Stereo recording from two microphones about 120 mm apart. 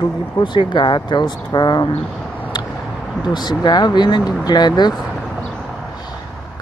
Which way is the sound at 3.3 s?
35° left (ahead or behind).